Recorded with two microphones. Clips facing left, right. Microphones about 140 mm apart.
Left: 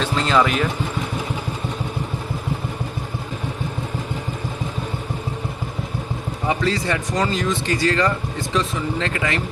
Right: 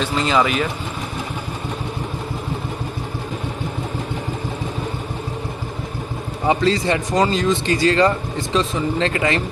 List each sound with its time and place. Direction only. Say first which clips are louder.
0.1 s speech: even; 5° right (ahead or behind)
6.5 s speech: right 4 dB; 30° right (ahead or behind)